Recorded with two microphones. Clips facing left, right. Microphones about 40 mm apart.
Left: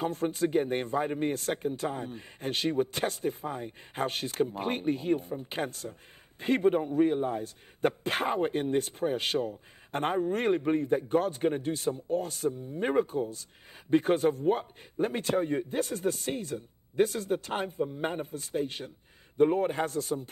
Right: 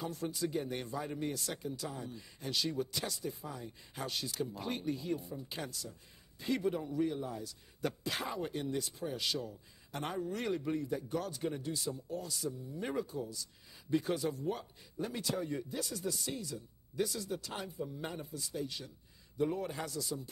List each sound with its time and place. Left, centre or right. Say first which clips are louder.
0.0 s speech: left 9 dB; left